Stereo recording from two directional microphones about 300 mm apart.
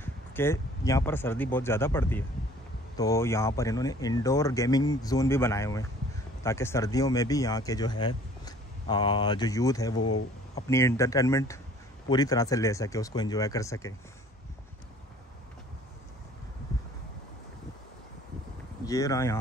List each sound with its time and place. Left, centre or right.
0.0 s speech: centre
18.9 s speech: centre